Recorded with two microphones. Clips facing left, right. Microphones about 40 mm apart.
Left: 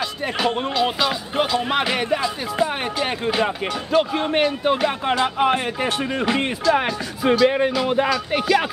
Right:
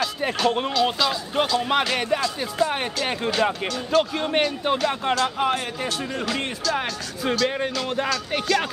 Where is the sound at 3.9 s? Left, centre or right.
Centre.